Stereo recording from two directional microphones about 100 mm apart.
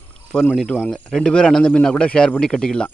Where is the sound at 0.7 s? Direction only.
5° left (ahead or behind).